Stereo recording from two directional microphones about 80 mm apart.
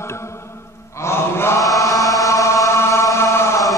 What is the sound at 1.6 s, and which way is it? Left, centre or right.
Chant, left.